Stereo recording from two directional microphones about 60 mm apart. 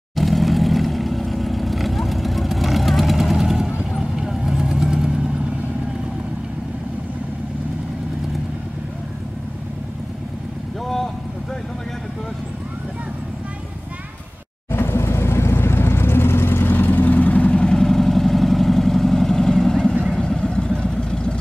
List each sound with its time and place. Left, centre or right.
0.1 s vehicle: centre
14.7 s vehicle: left; by 21.4 s centre